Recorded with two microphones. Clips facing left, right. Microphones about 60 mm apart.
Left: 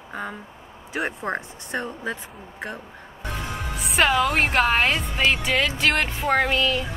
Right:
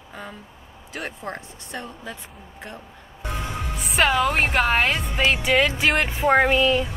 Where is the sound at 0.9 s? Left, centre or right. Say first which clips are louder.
Left 5 dB; centre.